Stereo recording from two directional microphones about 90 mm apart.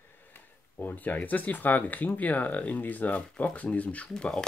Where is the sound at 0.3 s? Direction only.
20° left (ahead or behind).